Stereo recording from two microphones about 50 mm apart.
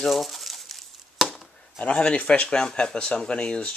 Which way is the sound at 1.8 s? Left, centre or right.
Left.